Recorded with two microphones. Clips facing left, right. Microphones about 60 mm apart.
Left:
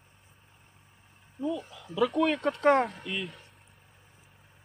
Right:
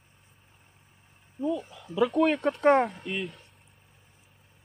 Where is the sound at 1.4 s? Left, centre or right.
Centre.